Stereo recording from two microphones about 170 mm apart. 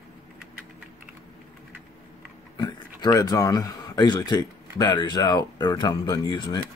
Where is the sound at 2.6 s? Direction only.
20° left (ahead or behind).